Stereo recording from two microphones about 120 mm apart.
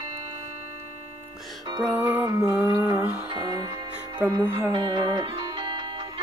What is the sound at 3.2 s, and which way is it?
Music, 35° right (ahead or behind).